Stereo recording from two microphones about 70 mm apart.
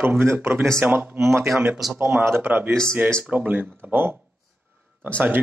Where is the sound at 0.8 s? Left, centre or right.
Right.